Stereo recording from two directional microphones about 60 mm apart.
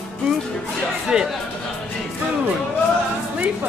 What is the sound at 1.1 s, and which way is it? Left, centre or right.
Speech, centre.